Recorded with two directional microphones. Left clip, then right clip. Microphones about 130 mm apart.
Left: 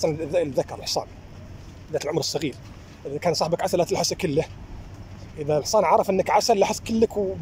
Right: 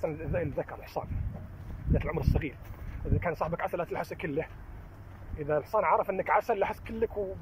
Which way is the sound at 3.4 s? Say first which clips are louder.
Left 10 dB; 35° left (ahead or behind).